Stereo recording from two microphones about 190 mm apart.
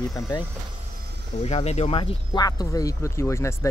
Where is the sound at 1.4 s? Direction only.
35° left (ahead or behind).